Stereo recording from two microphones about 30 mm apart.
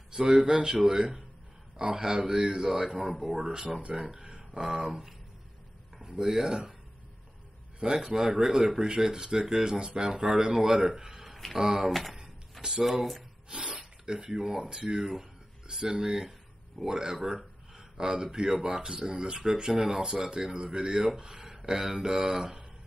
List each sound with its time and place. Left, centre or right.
0.1 s speech: right
3.0 s speech: centre
4.2 s speech: right
8.0 s speech: centre
11.2 s a sound: centre
11.5 s speech: centre
11.9 s speech: centre
13.5 s speech: right
15.0 s speech: centre
15.6 s speech: right
17.2 s speech: centre
17.7 s speech: right
21.2 s chopping: centre